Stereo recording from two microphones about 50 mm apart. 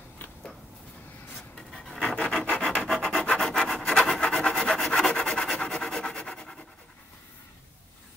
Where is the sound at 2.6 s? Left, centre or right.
Centre.